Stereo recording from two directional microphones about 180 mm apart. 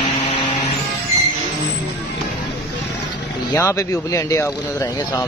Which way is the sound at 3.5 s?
15° left (ahead or behind).